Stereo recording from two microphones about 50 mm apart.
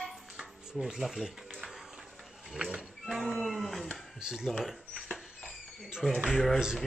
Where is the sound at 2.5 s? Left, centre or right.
Centre.